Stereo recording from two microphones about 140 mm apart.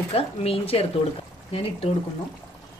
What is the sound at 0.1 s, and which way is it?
Speech, 45° left (ahead or behind).